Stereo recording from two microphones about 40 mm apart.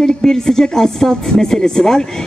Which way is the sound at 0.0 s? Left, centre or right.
Centre.